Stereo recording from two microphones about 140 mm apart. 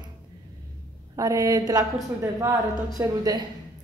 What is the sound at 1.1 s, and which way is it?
Speech, 25° right (ahead or behind).